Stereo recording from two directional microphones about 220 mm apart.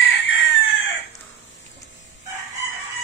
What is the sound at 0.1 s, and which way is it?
Chicken, 60° left (ahead or behind).